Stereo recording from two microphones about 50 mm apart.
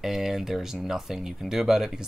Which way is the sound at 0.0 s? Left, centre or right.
Centre.